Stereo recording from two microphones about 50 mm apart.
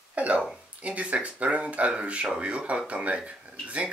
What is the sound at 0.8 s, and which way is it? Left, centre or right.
Speech, right.